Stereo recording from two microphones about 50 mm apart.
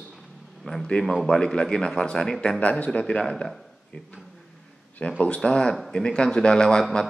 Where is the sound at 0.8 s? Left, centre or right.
Centre.